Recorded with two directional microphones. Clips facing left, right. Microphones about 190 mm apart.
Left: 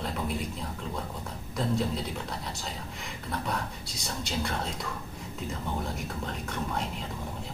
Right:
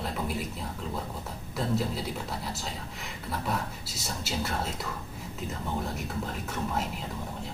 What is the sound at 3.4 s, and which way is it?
Speech, 5° right (ahead or behind).